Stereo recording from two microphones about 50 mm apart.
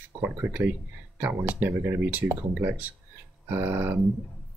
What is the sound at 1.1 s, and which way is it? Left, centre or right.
Speech, right.